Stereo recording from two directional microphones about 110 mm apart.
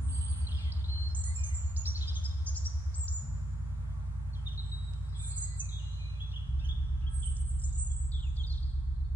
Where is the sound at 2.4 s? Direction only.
15° left (ahead or behind).